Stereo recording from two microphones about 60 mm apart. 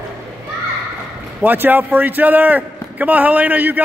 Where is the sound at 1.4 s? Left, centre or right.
Right.